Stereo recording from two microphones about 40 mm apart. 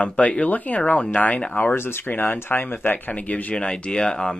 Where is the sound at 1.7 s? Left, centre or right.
Left.